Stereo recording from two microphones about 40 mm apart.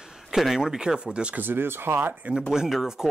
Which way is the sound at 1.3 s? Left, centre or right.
Right.